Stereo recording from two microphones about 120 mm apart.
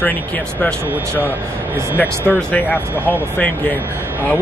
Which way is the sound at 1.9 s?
15° left (ahead or behind).